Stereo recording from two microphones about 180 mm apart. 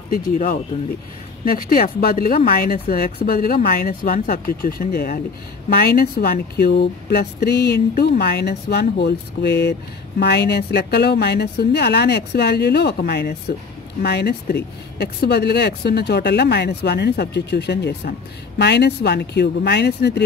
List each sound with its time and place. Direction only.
0.1 s speech: 50° left (ahead or behind); by 20.2 s 70° left (ahead or behind)